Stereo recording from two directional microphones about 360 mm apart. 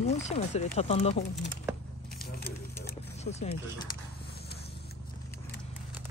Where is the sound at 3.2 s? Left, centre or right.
Centre.